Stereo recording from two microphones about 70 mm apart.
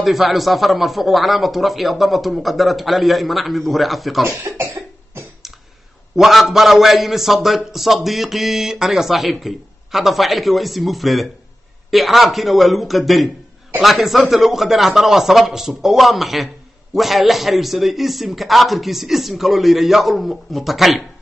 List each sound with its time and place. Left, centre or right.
0.0 s a man's voice: centre
4.3 s cough: right
6.1 s a man's voice: centre